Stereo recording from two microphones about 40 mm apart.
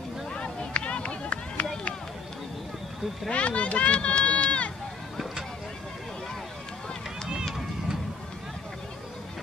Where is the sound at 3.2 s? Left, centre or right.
Left.